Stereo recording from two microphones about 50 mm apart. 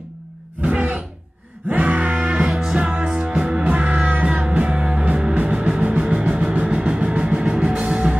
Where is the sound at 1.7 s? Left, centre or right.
Right.